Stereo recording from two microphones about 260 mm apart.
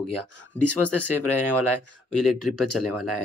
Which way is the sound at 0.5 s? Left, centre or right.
Right.